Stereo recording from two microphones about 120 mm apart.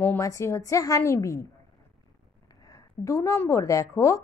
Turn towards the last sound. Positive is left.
turn(degrees=25)  # may be behind; listen again after turning